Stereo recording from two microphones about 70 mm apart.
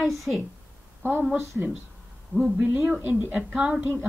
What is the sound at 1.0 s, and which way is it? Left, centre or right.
Speech, right.